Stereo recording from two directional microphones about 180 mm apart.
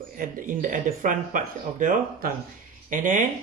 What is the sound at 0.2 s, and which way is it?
Speech, 45° right (ahead or behind).